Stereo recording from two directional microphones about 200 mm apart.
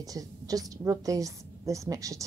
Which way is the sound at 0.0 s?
15° right (ahead or behind).